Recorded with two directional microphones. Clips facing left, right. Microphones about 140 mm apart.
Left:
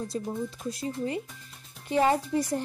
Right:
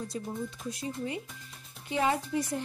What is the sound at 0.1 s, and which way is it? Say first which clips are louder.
Speech: left 5 dB; 35° left (ahead or behind).